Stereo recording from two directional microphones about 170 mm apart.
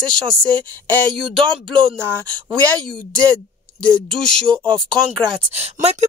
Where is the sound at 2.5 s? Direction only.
5° left (ahead or behind).